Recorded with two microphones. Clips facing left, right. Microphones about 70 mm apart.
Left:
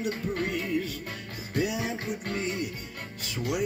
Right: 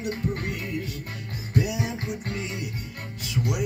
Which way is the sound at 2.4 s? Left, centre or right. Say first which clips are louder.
Left 2 dB; centre.